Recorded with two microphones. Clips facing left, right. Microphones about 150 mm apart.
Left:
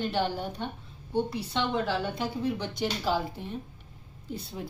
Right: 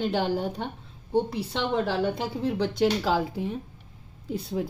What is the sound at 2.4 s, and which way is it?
A woman's voice, 90° right.